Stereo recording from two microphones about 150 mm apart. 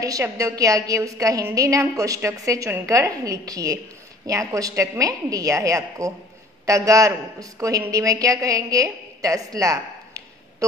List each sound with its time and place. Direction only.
0.0 s a woman's voice: 20° right (ahead or behind)